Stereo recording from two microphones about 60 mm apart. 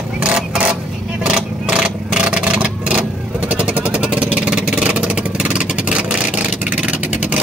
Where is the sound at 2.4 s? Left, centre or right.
Centre.